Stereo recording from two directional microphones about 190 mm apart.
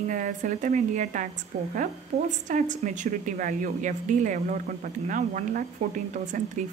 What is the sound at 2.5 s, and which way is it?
Speech, 40° right (ahead or behind).